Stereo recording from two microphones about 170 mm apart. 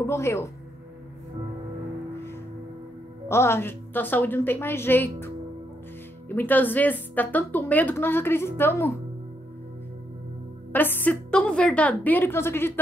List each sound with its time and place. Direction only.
0.0 s speech: 15° left (ahead or behind)
3.3 s speech: 15° left (ahead or behind)
10.7 s a woman's voice: 10° left (ahead or behind)